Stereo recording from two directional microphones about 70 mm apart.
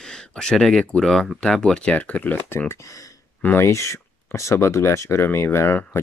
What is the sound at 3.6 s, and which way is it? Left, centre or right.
Speech, left.